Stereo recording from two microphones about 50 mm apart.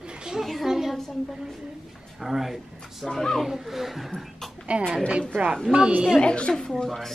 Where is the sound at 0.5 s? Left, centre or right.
Centre.